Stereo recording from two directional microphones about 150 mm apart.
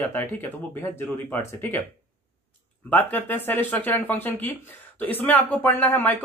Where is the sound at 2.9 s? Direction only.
10° left (ahead or behind).